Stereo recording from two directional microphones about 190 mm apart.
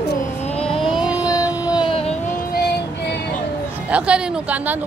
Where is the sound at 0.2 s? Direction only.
35° left (ahead or behind).